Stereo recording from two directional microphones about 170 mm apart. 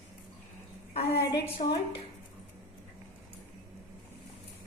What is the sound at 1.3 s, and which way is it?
Speech, 25° left (ahead or behind).